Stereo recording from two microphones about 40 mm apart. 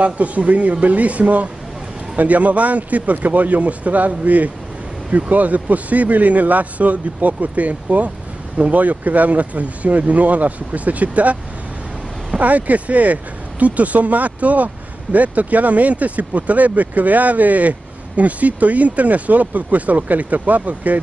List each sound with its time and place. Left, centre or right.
0.0 s speech: right
12.4 s speech: right